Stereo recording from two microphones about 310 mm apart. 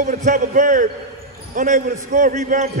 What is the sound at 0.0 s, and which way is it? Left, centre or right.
A man's voice, right.